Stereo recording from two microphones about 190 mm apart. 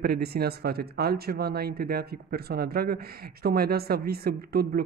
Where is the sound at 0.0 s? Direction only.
55° right (ahead or behind).